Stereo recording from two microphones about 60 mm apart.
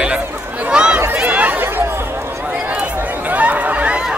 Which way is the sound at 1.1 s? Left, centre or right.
Right.